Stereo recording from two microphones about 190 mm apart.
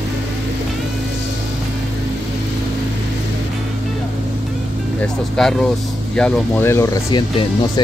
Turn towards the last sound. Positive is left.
turn(degrees=20)  # may be behind; listen again after turning